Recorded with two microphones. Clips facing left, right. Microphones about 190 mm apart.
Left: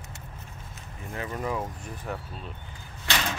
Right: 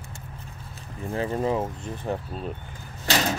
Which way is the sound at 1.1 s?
30° right (ahead or behind).